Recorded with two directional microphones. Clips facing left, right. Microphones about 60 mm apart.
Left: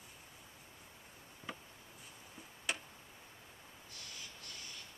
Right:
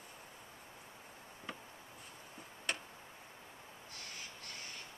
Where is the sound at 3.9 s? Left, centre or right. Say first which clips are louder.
Right 2 dB; right.